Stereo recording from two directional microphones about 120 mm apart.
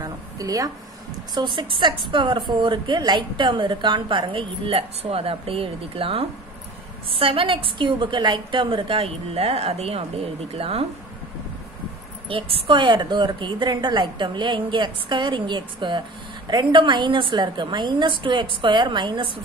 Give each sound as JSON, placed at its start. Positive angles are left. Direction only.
{"t": 0.0, "sound": "a sound", "side_deg": -30}
{"t": 1.3, "sound": "a woman's voice", "side_deg": -40}
{"t": 12.3, "sound": "a woman's voice", "side_deg": -50}